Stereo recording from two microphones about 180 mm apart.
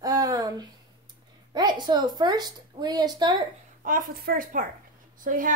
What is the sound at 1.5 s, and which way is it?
A woman's voice, 25° right (ahead or behind).